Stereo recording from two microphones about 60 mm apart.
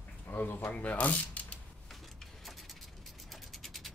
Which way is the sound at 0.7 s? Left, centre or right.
Left.